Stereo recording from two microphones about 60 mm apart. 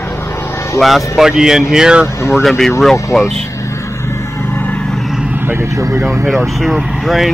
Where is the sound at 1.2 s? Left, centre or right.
Centre.